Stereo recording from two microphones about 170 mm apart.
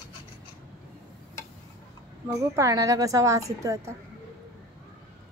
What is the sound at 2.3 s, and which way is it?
A woman's voice, 20° right (ahead or behind).